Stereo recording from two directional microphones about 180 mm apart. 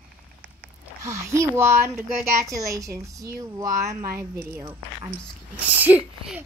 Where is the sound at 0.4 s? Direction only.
10° right (ahead or behind).